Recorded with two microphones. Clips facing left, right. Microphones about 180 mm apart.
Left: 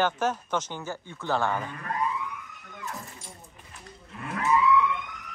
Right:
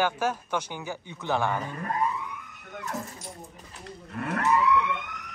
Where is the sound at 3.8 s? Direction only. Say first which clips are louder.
Right 6 dB; 65° right (ahead or behind).